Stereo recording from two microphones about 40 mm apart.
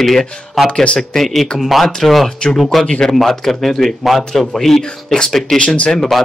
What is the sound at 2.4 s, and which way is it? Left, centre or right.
A man's voice, centre.